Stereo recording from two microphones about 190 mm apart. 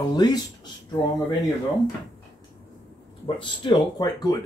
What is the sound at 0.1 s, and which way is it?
Speech, 20° left (ahead or behind).